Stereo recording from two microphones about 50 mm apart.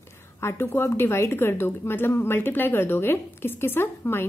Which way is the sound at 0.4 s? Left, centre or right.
Left.